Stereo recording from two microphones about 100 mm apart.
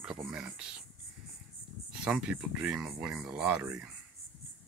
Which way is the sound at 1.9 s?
10° right (ahead or behind).